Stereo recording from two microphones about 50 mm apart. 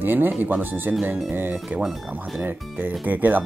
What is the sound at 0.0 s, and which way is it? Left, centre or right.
Speech, right.